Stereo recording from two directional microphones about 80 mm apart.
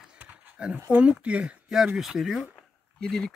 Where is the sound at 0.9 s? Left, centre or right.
Centre.